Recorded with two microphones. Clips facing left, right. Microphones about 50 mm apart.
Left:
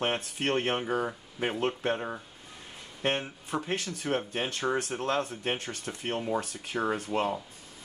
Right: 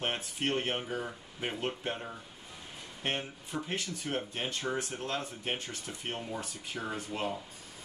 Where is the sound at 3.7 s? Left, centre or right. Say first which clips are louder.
Left 4 dB; left.